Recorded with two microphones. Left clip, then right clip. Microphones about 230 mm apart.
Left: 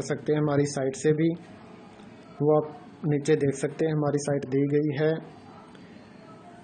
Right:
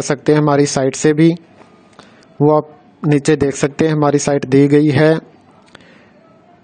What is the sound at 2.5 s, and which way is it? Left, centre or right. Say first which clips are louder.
A man's voice: right 9 dB; right.